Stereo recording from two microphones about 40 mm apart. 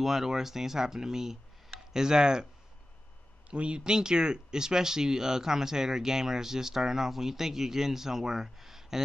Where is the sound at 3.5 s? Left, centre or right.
Right.